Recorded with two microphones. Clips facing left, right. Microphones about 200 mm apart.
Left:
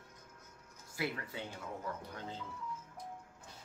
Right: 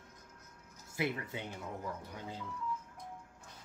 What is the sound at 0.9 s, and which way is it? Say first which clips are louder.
Speech: right 3 dB; 20° right (ahead or behind).